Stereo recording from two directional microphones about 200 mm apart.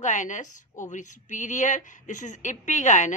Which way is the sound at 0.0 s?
40° left (ahead or behind).